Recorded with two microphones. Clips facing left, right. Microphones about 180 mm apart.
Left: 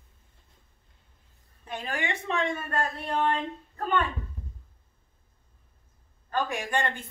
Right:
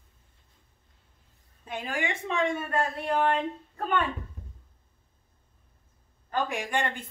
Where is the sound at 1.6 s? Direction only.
10° right (ahead or behind).